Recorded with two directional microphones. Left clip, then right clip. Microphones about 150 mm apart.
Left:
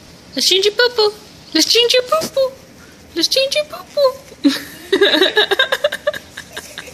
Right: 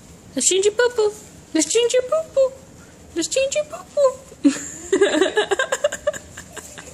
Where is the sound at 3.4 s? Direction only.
5° right (ahead or behind).